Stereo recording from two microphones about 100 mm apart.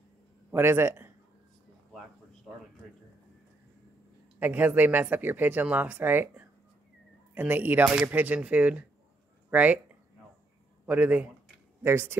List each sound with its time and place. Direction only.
0.5 s speech: 25° right (ahead or behind)
4.4 s speech: 20° right (ahead or behind)
10.9 s speech: 15° right (ahead or behind)